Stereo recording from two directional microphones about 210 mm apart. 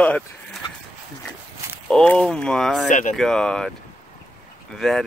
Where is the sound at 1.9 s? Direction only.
5° left (ahead or behind).